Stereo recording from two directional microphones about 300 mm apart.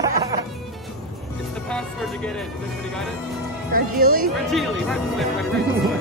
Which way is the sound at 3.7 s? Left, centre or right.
Right.